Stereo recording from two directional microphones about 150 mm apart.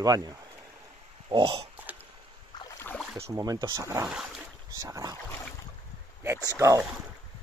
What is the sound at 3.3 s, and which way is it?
Speech, 25° right (ahead or behind).